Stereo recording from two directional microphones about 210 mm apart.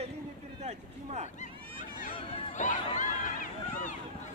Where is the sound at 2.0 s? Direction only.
40° left (ahead or behind).